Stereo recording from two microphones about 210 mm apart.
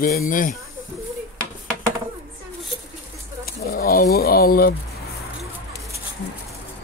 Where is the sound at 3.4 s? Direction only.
45° left (ahead or behind).